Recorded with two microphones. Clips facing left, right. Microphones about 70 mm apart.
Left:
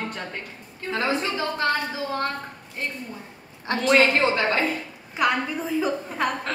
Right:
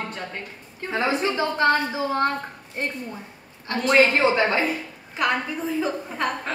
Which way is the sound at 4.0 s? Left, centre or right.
Centre.